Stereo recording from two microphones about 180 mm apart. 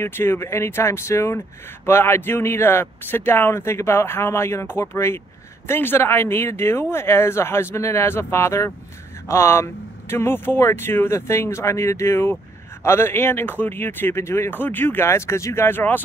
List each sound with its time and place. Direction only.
0.0 s speech: 15° left (ahead or behind)